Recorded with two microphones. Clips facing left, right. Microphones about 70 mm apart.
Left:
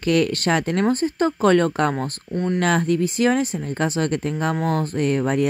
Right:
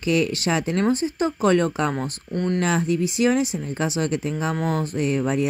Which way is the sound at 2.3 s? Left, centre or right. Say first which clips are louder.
Left 1 dB; centre.